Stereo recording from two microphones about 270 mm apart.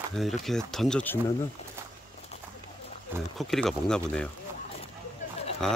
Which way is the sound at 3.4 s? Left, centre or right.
Centre.